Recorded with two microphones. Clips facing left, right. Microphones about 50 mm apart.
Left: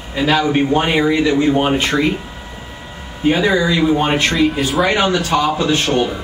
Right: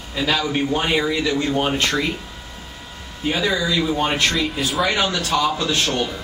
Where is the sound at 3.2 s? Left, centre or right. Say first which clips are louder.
Left 6 dB; centre.